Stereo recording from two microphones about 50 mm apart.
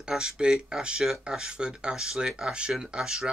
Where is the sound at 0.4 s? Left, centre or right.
Centre.